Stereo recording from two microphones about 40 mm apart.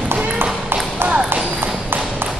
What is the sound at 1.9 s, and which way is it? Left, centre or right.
Tap, right.